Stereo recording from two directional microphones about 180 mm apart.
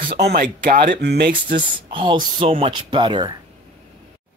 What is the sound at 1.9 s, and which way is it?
Speech, 30° right (ahead or behind).